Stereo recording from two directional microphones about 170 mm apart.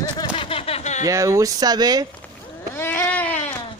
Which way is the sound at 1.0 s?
20° right (ahead or behind).